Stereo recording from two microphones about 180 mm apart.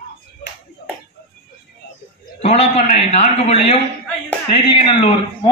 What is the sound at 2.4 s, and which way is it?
A man's voice, 35° left (ahead or behind).